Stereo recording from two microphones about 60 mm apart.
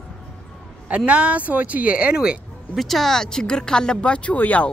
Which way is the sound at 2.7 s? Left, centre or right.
Centre.